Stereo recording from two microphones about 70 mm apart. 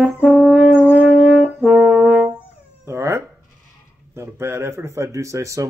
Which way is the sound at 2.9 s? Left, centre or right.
Right.